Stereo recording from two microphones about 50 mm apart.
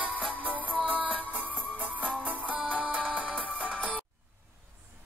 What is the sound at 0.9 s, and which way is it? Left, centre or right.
Music, right.